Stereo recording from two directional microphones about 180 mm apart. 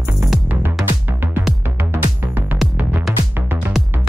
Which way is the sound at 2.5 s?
Centre (ahead or behind).